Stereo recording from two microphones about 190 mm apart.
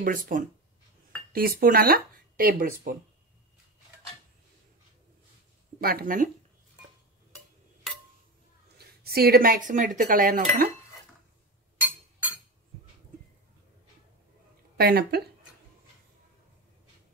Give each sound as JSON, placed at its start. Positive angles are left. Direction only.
{"t": 0.0, "sound": "speech", "side_deg": -45}
{"t": 5.8, "sound": "speech", "side_deg": -50}
{"t": 8.7, "sound": "dishes", "side_deg": -55}
{"t": 14.8, "sound": "a woman's voice", "side_deg": -55}